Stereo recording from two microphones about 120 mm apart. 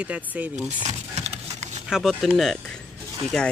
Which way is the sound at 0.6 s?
65° right (ahead or behind).